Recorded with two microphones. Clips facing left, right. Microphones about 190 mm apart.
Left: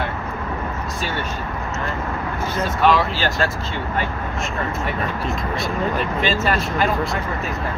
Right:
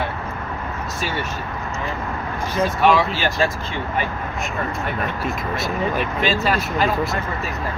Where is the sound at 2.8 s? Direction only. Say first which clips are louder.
Left 1 dB; 15° right (ahead or behind).